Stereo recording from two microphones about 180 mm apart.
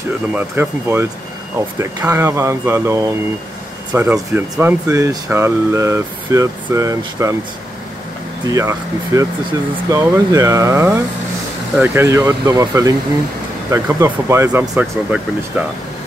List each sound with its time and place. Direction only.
0.3 s speech: 10° right (ahead or behind)
8.5 s speech: 20° right (ahead or behind)